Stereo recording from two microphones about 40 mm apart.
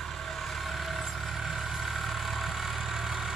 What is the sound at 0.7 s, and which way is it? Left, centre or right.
Vehicle, centre.